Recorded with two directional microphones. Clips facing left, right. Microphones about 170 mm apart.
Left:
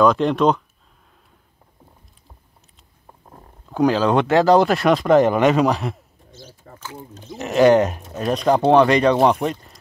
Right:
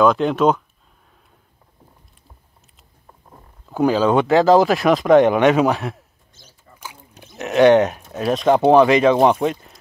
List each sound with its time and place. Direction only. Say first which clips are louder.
0.0 s speech: even; centre (ahead or behind)
3.7 s speech: right 1 dB; centre (ahead or behind)
7.3 s speech: right 1 dB; centre (ahead or behind)